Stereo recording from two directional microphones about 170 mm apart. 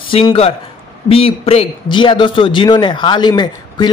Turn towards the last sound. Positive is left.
turn(degrees=25)  # may be behind; listen again after turning